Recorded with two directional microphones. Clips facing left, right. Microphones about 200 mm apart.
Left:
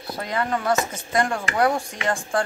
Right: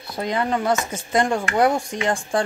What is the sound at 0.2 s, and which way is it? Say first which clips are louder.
Speech: right 3 dB; 20° right (ahead or behind).